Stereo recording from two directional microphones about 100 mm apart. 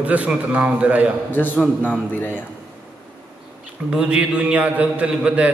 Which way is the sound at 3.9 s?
10° right (ahead or behind).